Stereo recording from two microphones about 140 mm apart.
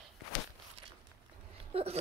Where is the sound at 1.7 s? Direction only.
45° right (ahead or behind).